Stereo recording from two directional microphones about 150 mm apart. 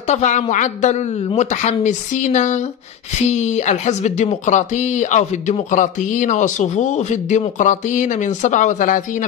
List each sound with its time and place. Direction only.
0.1 s a man's voice: 55° left (ahead or behind)